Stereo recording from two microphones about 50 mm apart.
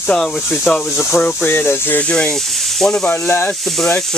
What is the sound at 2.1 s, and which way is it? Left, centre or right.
Speech, left.